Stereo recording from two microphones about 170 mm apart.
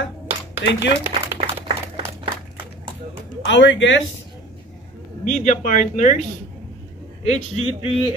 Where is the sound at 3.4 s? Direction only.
90° left.